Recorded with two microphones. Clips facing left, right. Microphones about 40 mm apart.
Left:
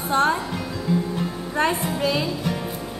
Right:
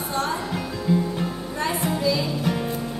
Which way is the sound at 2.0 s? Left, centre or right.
Left.